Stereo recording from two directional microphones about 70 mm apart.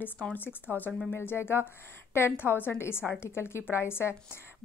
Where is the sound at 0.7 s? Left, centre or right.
Right.